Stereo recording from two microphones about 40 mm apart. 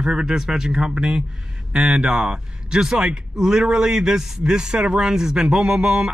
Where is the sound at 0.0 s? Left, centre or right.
Centre.